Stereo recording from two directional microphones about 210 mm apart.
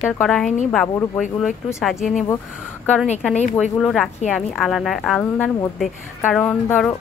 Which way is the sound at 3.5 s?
Centre (ahead or behind).